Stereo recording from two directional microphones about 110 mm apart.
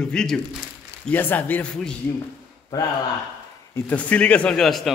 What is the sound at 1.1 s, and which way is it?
Speech, 15° left (ahead or behind).